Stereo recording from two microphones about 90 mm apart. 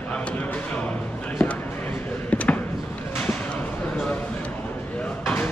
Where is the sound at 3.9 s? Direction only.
15° left (ahead or behind).